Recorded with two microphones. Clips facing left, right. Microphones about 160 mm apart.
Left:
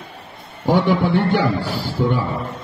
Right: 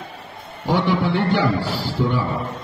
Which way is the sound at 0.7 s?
50° left (ahead or behind).